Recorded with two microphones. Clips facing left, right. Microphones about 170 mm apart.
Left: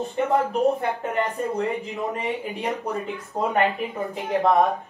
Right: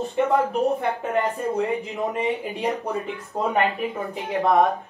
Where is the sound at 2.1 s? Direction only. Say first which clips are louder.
Right 3 dB; 20° right (ahead or behind).